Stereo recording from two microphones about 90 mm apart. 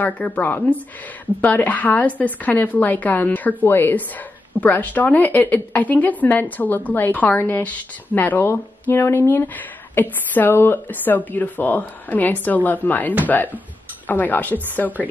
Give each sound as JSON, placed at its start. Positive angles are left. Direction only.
{"t": 0.0, "sound": "a woman's voice", "side_deg": 20}